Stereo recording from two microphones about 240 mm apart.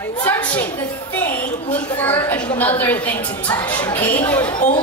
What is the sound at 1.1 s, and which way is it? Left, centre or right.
A woman's voice, centre.